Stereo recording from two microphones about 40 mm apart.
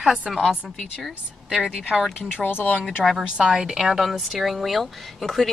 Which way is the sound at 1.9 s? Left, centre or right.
Centre.